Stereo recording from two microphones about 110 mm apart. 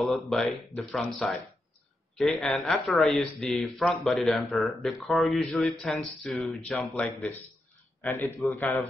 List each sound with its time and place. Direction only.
0.0 s a man's voice: centre (ahead or behind); by 8.8 s 20° left (ahead or behind)